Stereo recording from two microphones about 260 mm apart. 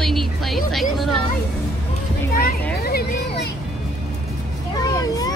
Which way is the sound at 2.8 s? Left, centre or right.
Left.